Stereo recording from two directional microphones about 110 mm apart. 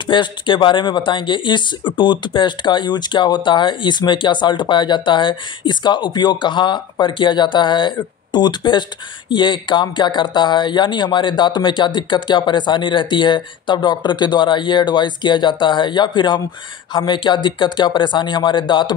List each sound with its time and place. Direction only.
0.0 s speech: 50° left (ahead or behind)